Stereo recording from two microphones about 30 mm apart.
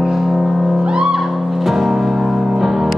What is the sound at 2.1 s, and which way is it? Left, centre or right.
Music, centre.